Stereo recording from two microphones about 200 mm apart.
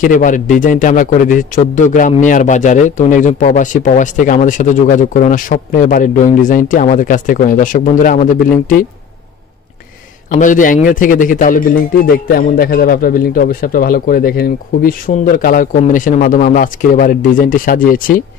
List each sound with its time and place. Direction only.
0.0 s a man's voice: 40° left (ahead or behind)
10.3 s a man's voice: 40° left (ahead or behind)